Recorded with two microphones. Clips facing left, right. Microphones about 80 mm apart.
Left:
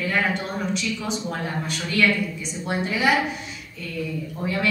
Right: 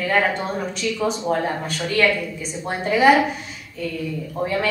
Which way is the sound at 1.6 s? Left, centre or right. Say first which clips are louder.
Even; right.